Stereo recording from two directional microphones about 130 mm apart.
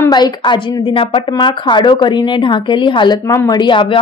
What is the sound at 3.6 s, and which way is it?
Speech, 40° left (ahead or behind).